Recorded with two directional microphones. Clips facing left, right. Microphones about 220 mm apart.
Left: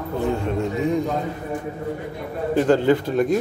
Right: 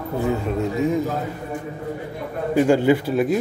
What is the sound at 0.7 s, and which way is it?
Speech, centre (ahead or behind).